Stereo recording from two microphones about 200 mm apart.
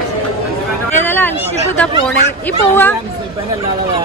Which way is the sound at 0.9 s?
10° left (ahead or behind).